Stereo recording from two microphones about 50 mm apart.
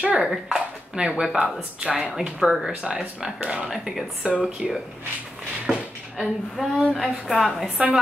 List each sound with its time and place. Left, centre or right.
0.2 s a woman's voice: centre
0.9 s speech: centre
3.3 s speech: right
3.7 s speech: centre
4.2 s speech: centre
4.6 s a woman's voice: centre